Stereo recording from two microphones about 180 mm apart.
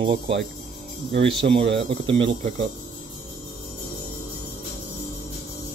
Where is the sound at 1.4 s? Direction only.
30° right (ahead or behind).